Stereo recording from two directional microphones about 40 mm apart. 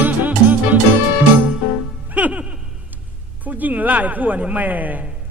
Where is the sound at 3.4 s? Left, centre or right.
Right.